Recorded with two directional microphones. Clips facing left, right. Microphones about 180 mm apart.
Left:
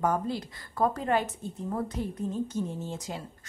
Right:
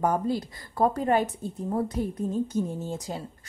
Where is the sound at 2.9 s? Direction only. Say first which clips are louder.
Right 3 dB; 35° right (ahead or behind).